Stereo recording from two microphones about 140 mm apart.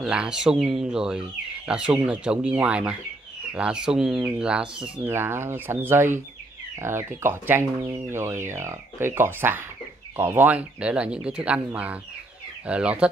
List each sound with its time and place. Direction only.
0.0 s speech: 5° right (ahead or behind)
5.0 s speech: 15° right (ahead or behind)